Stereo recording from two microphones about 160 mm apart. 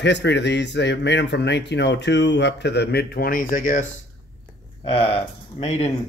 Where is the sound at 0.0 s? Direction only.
90° left; by 3.8 s 60° left (ahead or behind).